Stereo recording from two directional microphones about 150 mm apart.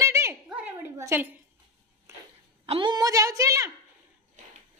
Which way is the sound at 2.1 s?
20° right (ahead or behind).